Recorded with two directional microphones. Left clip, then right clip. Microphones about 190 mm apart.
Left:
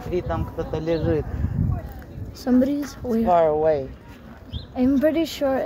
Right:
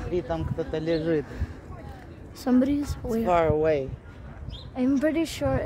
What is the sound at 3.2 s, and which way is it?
Speech, 25° right (ahead or behind).